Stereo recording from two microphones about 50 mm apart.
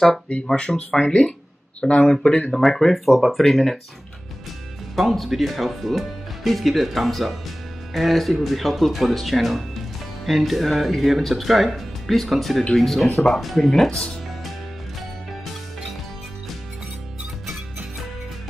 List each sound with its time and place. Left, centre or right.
0.5 s speech: centre
2.0 s speech: centre
3.1 s speech: centre
4.9 s speech: centre
15.0 s music: centre